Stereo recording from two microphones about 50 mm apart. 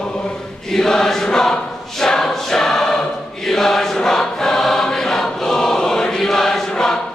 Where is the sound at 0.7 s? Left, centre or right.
Centre.